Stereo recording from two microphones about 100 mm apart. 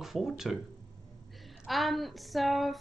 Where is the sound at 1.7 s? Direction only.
Centre (ahead or behind).